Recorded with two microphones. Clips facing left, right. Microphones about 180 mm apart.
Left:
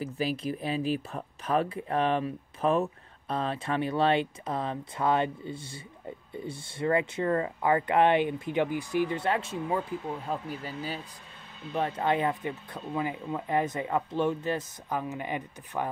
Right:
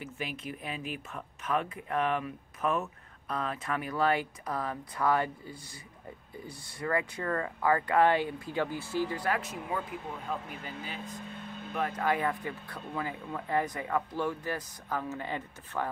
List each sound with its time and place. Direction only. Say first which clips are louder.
0.0 s speech: left 8 dB; 35° left (ahead or behind); by 15.9 s 15° left (ahead or behind)